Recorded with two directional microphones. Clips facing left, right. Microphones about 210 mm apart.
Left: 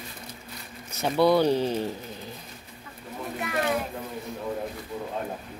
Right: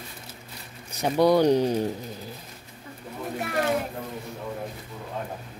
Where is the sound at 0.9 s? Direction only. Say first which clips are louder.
Right 1 dB; 15° right (ahead or behind).